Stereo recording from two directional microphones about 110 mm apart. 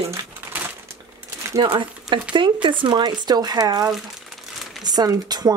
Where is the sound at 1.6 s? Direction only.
45° right (ahead or behind).